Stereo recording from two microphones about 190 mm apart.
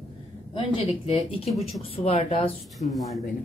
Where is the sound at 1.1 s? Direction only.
30° left (ahead or behind).